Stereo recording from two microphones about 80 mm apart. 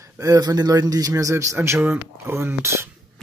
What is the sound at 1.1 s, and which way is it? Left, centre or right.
Speech, right.